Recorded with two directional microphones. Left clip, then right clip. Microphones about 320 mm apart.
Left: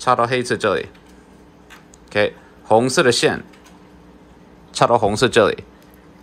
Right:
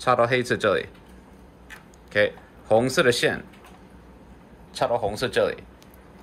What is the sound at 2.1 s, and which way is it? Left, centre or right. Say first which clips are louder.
Speech: left 3 dB; centre.